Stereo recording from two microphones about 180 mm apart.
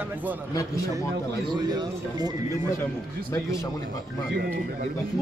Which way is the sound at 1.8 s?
20° right (ahead or behind).